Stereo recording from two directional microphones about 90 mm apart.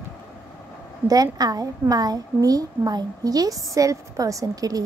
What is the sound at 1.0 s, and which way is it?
A woman's voice, 45° right (ahead or behind).